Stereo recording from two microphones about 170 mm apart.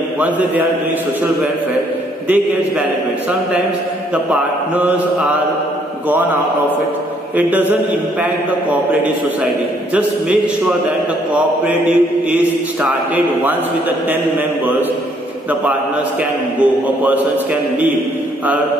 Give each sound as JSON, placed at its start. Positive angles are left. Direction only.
{"t": 4.1, "sound": "a man's voice", "side_deg": -10}
{"t": 7.3, "sound": "a man's voice", "side_deg": -10}
{"t": 12.3, "sound": "a man's voice", "side_deg": -10}
{"t": 16.5, "sound": "a man's voice", "side_deg": -10}